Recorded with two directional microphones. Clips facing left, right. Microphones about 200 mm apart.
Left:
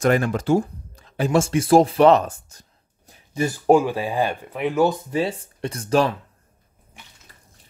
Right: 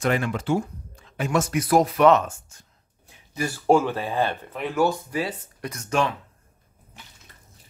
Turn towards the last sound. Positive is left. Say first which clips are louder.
# left 5 dB
turn(degrees=35)  # may be behind; listen again after turning